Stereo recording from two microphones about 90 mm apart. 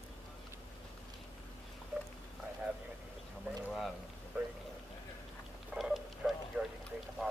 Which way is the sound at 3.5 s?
20° right (ahead or behind).